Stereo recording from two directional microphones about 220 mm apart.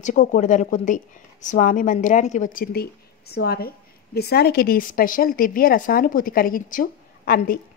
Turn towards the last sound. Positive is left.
turn(degrees=40)  # may be behind; listen again after turning